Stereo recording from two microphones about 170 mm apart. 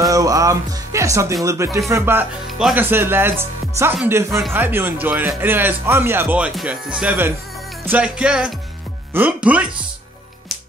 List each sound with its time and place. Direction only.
0.0 s music: 20° right (ahead or behind)
1.4 s speech: 15° right (ahead or behind)
7.8 s music: 10° right (ahead or behind)
9.1 s speech: 10° right (ahead or behind)